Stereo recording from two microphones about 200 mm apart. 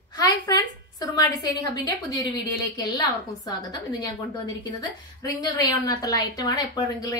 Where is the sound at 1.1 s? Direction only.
15° left (ahead or behind).